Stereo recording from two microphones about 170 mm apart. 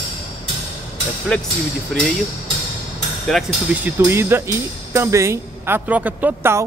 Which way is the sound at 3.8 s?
15° right (ahead or behind).